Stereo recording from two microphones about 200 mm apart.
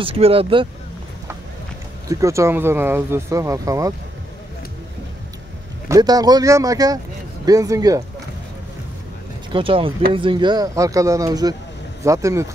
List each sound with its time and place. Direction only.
0.0 s speech: 30° right (ahead or behind)
2.0 s speech: 15° right (ahead or behind)
5.9 s speech: 20° right (ahead or behind)
9.5 s speech: 25° right (ahead or behind)